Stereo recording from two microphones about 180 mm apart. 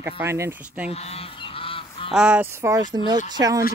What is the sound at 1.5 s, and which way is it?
Goose, 30° left (ahead or behind).